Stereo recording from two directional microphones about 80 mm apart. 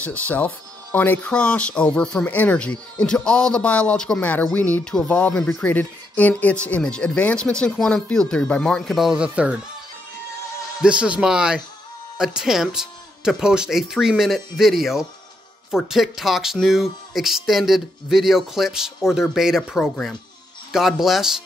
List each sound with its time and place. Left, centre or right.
0.0 s speech: centre
8.9 s speech: centre
10.8 s speech: centre